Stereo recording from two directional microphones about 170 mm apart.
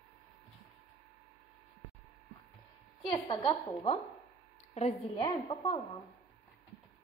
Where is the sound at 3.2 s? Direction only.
30° left (ahead or behind).